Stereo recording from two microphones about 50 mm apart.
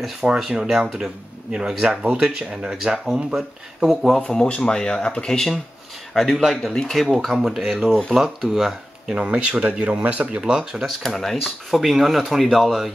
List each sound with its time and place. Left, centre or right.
0.4 s speech: centre
4.5 s speech: centre
6.1 s speech: centre
9.2 s speech: right
10.9 s speech: centre